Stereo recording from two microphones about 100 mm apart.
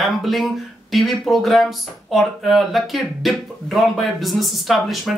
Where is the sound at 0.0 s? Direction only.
Centre (ahead or behind).